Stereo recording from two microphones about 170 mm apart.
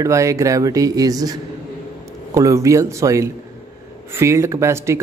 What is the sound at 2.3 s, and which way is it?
Speech, 20° right (ahead or behind).